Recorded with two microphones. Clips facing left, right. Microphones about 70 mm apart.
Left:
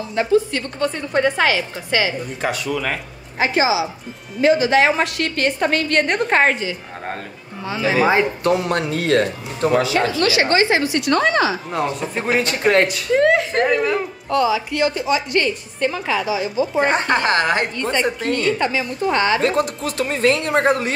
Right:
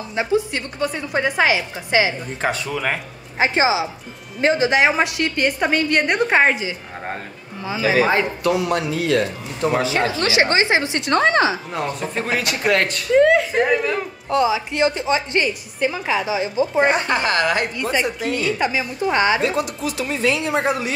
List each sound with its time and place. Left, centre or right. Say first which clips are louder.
0.1 s a woman's voice: left 3 dB; centre
0.8 s a woman's voice: left 3 dB; centre
2.4 s a woman's voice: even; right
4.6 s a woman's voice: left 1 dB; centre
8.5 s speech: left 1 dB; left
9.8 s a woman's voice: left 3 dB; right
11.7 s speech: left 2 dB; centre
12.3 s a woman's voice: left 3 dB; left
12.8 s speech: right 1 dB; centre
14.3 s a woman's voice: even; right
15.4 s a woman's voice: left 1 dB; centre; by 16.6 s right
16.9 s a woman's voice: left 2 dB; left
18.3 s a woman's voice: left 1 dB; centre
19.4 s speech: left 2 dB; left